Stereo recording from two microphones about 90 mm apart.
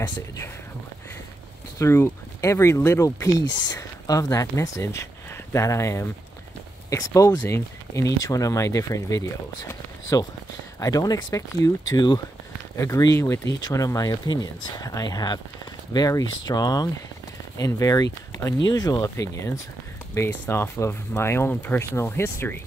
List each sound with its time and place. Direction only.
1.8 s speech: 35° left (ahead or behind)
3.6 s speech: 45° left (ahead or behind)
12.7 s speech: 35° left (ahead or behind)